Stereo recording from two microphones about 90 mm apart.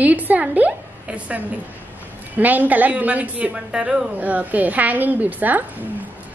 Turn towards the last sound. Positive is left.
turn(degrees=-20)  # may be behind; listen again after turning